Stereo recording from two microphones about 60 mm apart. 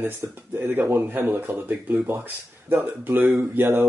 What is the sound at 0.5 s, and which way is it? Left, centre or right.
Speech, right.